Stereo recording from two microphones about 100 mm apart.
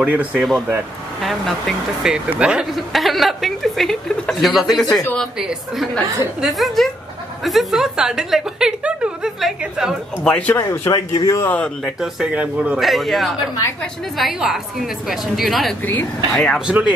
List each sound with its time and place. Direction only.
0.0 s a man's voice: 15° right (ahead or behind)
1.2 s a woman's voice: centre (ahead or behind)
2.1 s a man's voice: 10° right (ahead or behind)
2.9 s a woman's voice: centre (ahead or behind)
10.2 s speech: 10° left (ahead or behind)
10.9 s speech: 45° left (ahead or behind)
11.3 s speech: 20° left (ahead or behind)
12.0 s a man's voice: 10° right (ahead or behind)
12.8 s a woman's voice: centre (ahead or behind)
15.8 s speech: 20° left (ahead or behind)
16.3 s a woman's voice: 5° left (ahead or behind)
16.6 s a man's voice: 15° right (ahead or behind)